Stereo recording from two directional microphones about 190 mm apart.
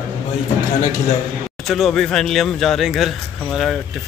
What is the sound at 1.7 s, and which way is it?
Speech, centre (ahead or behind).